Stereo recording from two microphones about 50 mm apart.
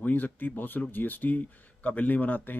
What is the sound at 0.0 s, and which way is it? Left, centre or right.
Speech, left.